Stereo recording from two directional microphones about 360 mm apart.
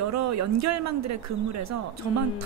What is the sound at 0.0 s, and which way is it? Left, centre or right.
A woman's voice, right.